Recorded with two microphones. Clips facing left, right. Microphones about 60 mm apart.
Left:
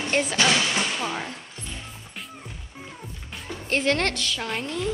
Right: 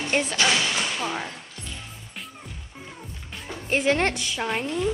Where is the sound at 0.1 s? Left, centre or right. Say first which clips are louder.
Left 1 dB; centre.